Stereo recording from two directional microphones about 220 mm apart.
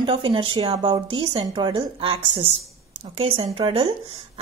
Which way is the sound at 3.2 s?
25° right (ahead or behind).